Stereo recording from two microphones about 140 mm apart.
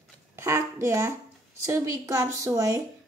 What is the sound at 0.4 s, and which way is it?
A woman's voice, 20° right (ahead or behind).